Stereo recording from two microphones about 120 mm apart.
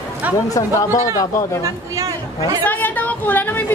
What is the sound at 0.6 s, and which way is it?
Speech, 25° left (ahead or behind).